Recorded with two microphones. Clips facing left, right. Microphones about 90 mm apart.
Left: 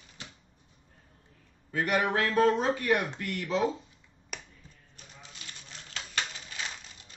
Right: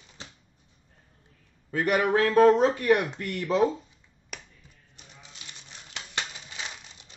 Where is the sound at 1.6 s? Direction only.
45° right (ahead or behind).